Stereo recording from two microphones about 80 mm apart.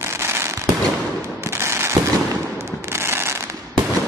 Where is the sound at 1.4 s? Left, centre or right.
Right.